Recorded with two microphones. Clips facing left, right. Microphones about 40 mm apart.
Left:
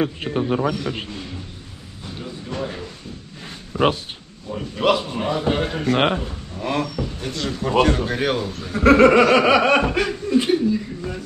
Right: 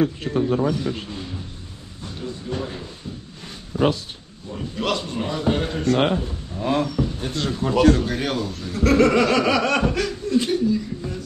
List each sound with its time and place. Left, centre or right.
0.0 s snicker: left
2.5 s snicker: left
3.7 s speech: left
4.5 s a man's voice: centre
5.9 s snicker: left
6.6 s speech: left
7.4 s snicker: left
8.1 s a man's voice: centre
8.7 s snicker: left